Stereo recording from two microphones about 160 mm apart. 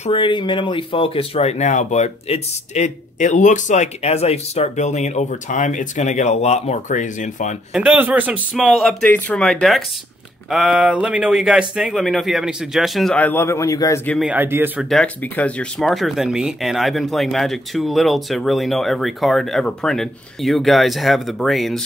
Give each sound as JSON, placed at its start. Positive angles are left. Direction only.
{"t": 0.0, "sound": "speech", "side_deg": 35}
{"t": 7.7, "sound": "a man's voice", "side_deg": -10}
{"t": 9.0, "sound": "speech", "side_deg": 10}
{"t": 14.2, "sound": "a man's voice", "side_deg": -10}
{"t": 14.9, "sound": "speech", "side_deg": 5}